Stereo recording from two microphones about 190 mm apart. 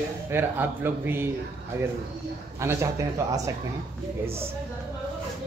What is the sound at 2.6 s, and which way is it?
Speech, 15° right (ahead or behind).